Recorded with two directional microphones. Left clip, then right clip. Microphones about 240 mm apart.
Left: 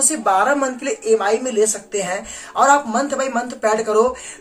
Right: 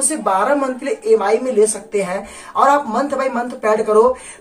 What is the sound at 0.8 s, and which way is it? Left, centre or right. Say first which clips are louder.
A woman's voice: right 3 dB; centre.